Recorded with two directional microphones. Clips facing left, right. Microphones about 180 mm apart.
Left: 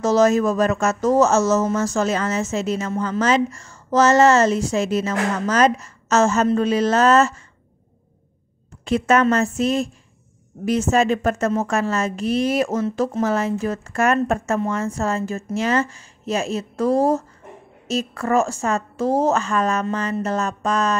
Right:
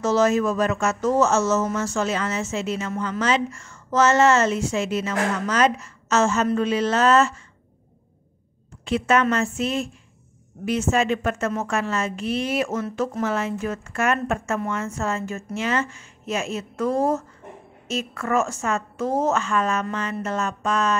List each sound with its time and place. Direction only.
0.0 s a woman's voice: 40° left (ahead or behind)
8.8 s a woman's voice: 45° left (ahead or behind)